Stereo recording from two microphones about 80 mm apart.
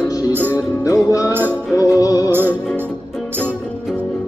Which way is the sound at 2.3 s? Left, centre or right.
Right.